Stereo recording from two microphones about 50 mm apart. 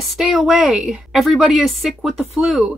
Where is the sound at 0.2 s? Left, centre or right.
Centre.